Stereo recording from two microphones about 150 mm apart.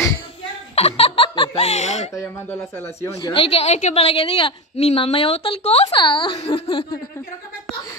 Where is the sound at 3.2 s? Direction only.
35° left (ahead or behind).